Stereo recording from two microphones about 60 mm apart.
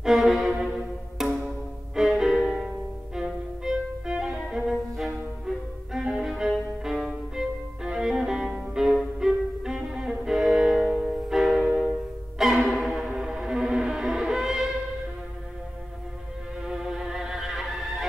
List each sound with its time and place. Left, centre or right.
0.0 s music: centre
3.2 s violin: centre
6.1 s music: centre
16.6 s music: centre